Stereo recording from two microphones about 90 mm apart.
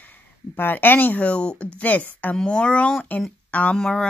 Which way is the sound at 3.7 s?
5° left (ahead or behind).